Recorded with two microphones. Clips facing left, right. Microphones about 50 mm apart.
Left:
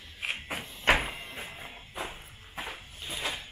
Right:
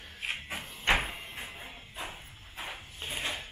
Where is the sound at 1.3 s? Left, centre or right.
Left.